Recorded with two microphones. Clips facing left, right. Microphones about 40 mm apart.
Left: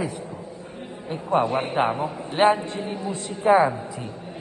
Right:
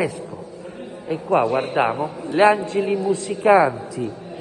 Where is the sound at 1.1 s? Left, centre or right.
Right.